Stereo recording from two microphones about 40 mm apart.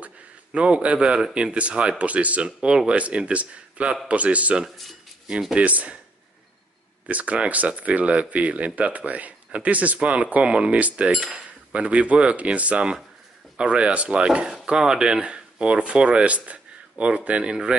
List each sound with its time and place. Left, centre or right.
0.5 s speech: right
4.6 s speech: centre
5.6 s speech: right
7.1 s speech: right